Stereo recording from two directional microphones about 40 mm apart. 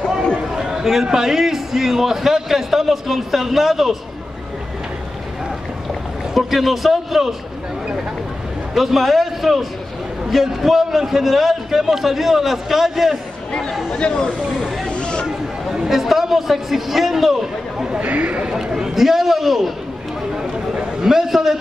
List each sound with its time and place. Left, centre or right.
0.6 s a man's voice: centre
6.3 s a man's voice: centre
8.7 s a man's voice: centre
13.9 s speech: left
14.9 s chatter: left
15.2 s chatter: centre
15.9 s a man's voice: centre
18.0 s speech: right
18.5 s a man's voice: centre
20.3 s a sound: centre